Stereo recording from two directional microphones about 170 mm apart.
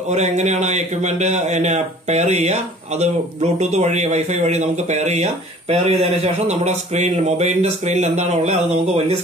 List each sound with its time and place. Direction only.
0.1 s a man's voice: 45° right (ahead or behind)